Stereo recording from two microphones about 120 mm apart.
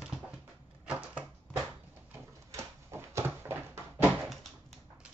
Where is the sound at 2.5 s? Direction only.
20° right (ahead or behind).